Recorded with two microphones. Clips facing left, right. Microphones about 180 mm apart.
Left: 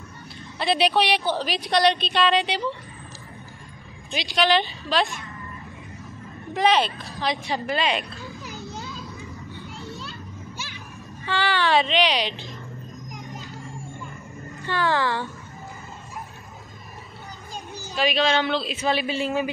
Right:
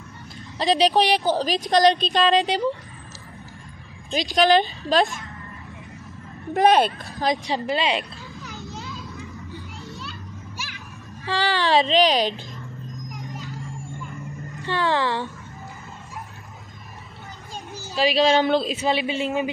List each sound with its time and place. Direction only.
0.6 s speech: 35° right (ahead or behind)
4.1 s speech: 45° right (ahead or behind)
6.5 s speech: 50° right (ahead or behind)
7.5 s a woman's voice: 25° right (ahead or behind)
11.2 s speech: 35° right (ahead or behind)
14.6 s a woman's voice: 25° right (ahead or behind)
17.9 s speech: 35° right (ahead or behind)
18.8 s a woman's voice: 25° right (ahead or behind)